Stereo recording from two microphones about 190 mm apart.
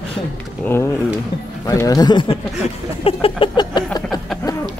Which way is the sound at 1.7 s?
20° left (ahead or behind).